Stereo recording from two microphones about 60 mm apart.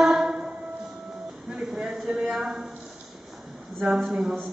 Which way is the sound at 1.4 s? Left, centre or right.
Centre.